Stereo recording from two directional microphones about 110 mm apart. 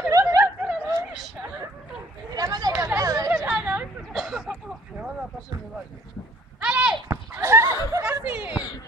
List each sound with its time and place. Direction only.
0.1 s snicker: 30° right (ahead or behind)
0.4 s snicker: 10° right (ahead or behind)
2.3 s chatter: 35° right (ahead or behind)
3.4 s a sound: 10° right (ahead or behind)
6.6 s goat: 10° right (ahead or behind)
7.3 s a sound: 25° right (ahead or behind)